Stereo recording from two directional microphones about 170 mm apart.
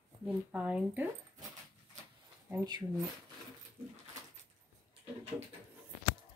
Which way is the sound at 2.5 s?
20° right (ahead or behind).